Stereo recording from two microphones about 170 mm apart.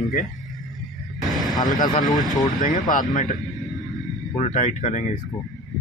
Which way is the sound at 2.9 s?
50° left (ahead or behind).